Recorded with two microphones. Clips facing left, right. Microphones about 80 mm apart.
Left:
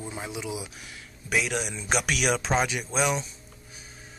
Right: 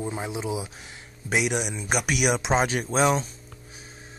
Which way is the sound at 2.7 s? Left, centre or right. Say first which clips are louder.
Right 5 dB; right.